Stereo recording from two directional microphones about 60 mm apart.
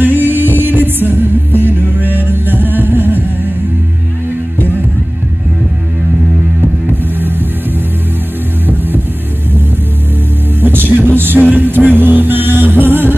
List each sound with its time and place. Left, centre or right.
0.0 s music: right
6.9 s music: right
10.6 s music: right